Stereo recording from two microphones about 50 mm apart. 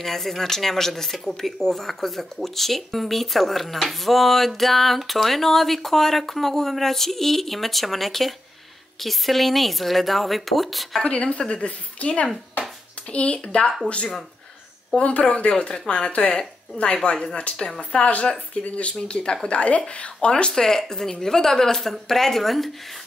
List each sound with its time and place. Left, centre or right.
0.0 s speech: centre
11.1 s speech: centre
15.0 s speech: left
20.5 s speech: centre